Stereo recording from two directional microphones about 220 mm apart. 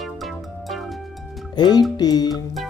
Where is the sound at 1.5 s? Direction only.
20° left (ahead or behind).